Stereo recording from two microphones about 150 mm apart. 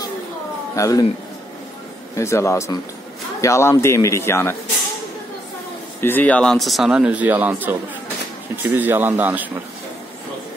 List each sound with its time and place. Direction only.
0.7 s a man's voice: 25° left (ahead or behind)
2.1 s a man's voice: 20° left (ahead or behind)
5.9 s speech: 15° left (ahead or behind); by 9.5 s 10° right (ahead or behind)